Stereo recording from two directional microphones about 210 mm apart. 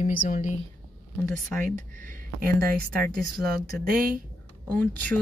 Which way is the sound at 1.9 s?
40° right (ahead or behind).